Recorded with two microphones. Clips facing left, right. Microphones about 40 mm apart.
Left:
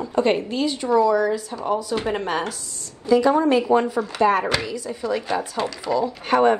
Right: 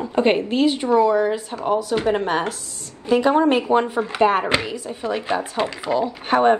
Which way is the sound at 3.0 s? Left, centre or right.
Right.